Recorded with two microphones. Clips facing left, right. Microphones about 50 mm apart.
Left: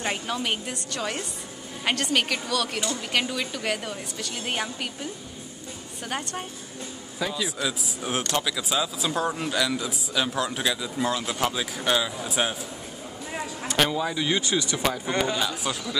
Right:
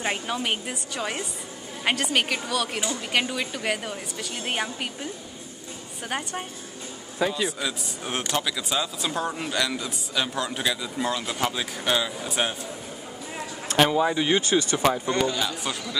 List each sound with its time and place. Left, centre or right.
0.0 s a man's voice: centre
7.4 s speech: centre
13.7 s speech: centre
15.0 s a man's voice: centre
15.3 s speech: centre